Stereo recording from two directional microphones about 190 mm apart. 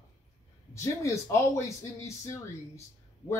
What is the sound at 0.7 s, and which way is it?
Speech, 15° left (ahead or behind).